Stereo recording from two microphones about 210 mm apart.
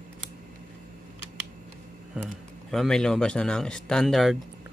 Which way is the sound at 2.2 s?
Centre (ahead or behind).